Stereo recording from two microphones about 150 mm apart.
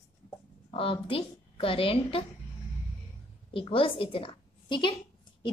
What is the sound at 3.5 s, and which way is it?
A woman's voice, 35° left (ahead or behind).